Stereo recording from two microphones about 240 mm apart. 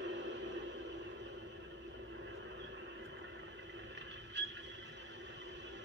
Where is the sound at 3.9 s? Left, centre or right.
Right.